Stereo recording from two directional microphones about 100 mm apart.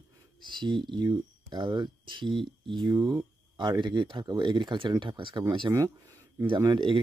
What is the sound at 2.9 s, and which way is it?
Speech, 40° right (ahead or behind).